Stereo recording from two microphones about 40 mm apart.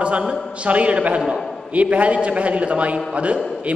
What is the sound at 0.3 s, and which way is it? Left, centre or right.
A man's voice, right.